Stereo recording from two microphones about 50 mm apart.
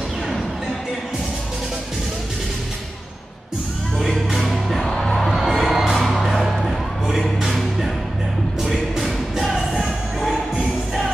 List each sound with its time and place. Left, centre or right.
4.3 s music: centre
4.8 s music: centre
5.1 s music: centre